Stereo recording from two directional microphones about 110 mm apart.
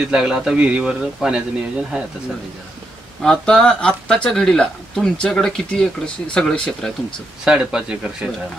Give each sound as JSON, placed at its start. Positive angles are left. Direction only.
{"t": 0.1, "sound": "a man's voice", "side_deg": -5}
{"t": 3.2, "sound": "speech", "side_deg": 5}
{"t": 7.4, "sound": "a man's voice", "side_deg": -10}